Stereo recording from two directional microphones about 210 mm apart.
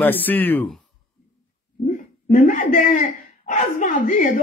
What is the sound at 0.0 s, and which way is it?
Speech, 10° left (ahead or behind).